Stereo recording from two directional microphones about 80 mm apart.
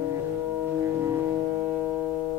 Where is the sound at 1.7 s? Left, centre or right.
Right.